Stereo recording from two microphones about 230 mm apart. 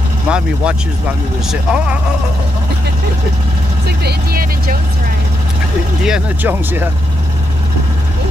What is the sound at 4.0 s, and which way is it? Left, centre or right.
Vehicle, right.